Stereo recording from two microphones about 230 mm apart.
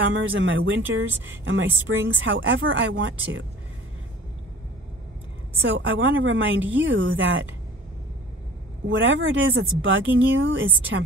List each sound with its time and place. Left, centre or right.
0.1 s speech: right
5.6 s speech: right
8.8 s speech: right